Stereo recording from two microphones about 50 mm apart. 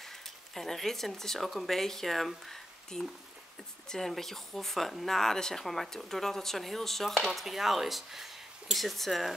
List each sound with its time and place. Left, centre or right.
0.6 s speech: centre